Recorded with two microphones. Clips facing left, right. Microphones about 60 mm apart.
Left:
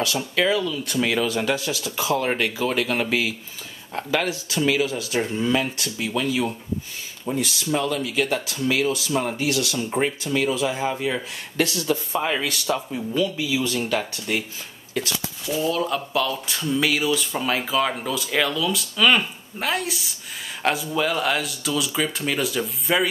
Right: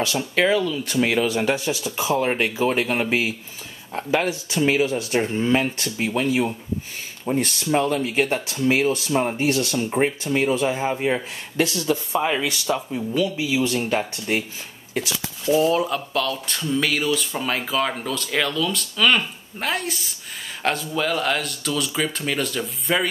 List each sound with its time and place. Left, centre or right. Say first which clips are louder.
0.4 s speech: right 2 dB; right
7.3 s speech: right 3 dB; right
11.1 s speech: right 1 dB; centre
15.4 s speech: right 6 dB; right
16.1 s speech: even; centre